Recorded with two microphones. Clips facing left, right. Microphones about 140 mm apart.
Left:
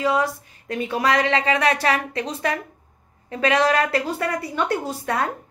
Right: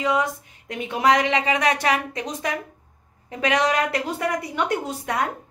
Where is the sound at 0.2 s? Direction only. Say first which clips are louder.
Left 1 dB; 20° right (ahead or behind).